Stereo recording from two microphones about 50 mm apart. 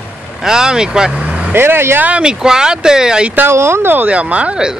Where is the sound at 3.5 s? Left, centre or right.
Right.